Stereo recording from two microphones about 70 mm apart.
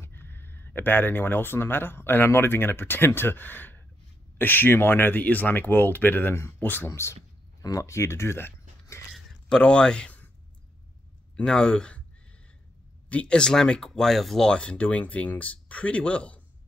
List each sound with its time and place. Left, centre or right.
0.0 s speech: left
6.9 s speech: left
9.6 s speech: centre
11.3 s speech: centre
13.1 s speech: centre